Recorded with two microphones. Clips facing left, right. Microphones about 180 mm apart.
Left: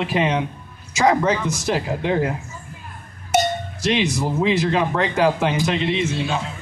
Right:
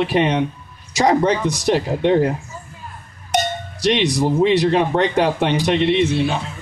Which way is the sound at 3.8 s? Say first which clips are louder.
Right 4 dB; 35° right (ahead or behind).